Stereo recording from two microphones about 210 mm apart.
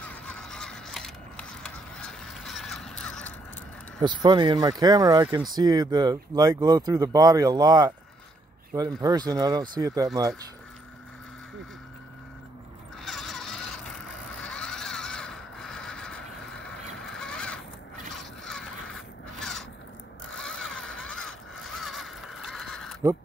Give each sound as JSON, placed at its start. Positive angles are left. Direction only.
{"t": 0.1, "sound": "a sound", "side_deg": 5}
{"t": 4.0, "sound": "speech", "side_deg": -20}
{"t": 13.0, "sound": "a sound", "side_deg": 0}
{"t": 17.0, "sound": "zipper", "side_deg": 5}
{"t": 18.4, "sound": "crow", "side_deg": 0}
{"t": 20.3, "sound": "zipper", "side_deg": 0}